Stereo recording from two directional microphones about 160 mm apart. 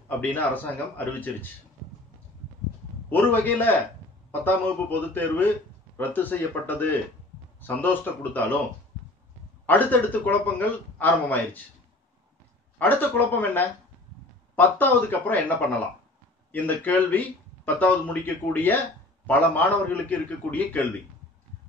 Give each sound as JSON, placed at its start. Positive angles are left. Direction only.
{"t": 0.2, "sound": "a man's voice", "side_deg": 10}
{"t": 3.1, "sound": "a man's voice", "side_deg": 10}
{"t": 9.7, "sound": "a man's voice", "side_deg": 10}
{"t": 12.7, "sound": "a man's voice", "side_deg": 10}
{"t": 16.5, "sound": "a man's voice", "side_deg": 10}